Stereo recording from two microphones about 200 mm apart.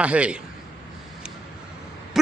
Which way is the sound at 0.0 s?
5° right (ahead or behind).